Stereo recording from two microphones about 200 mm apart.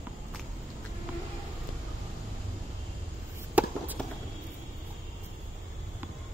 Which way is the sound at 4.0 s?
5° left (ahead or behind).